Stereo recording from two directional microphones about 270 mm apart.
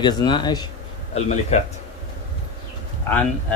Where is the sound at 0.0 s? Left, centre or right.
Centre.